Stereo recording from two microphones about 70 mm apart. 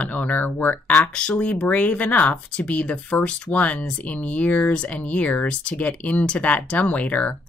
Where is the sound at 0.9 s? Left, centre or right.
Centre.